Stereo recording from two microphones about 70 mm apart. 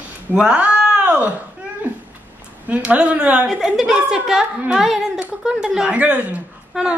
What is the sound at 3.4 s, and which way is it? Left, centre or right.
A woman's voice, centre.